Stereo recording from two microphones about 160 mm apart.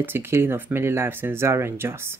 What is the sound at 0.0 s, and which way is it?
Speech, 15° right (ahead or behind).